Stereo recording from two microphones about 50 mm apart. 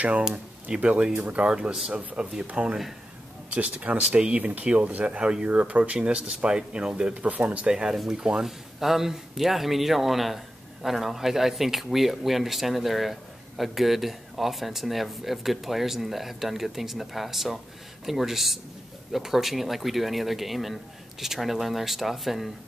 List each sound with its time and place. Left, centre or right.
0.3 s speech: right
4.1 s speech: centre
4.4 s speech: right
7.7 s speech: centre